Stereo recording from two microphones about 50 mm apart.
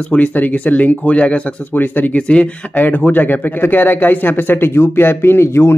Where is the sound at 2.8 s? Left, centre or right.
Left.